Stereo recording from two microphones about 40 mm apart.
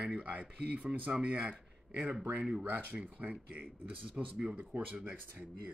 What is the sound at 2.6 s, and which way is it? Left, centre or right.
Speech, right.